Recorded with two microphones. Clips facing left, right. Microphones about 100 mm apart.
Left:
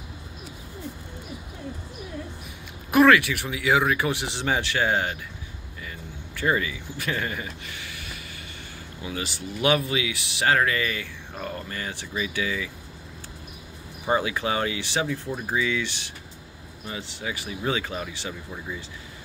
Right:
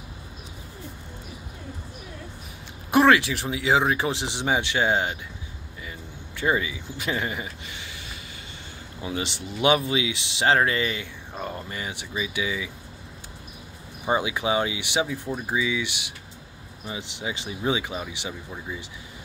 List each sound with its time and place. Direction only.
2.9 s speech: 25° right (ahead or behind)
14.0 s speech: 15° right (ahead or behind)